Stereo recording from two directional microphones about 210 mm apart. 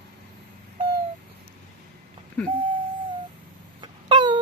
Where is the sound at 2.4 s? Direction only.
5° left (ahead or behind).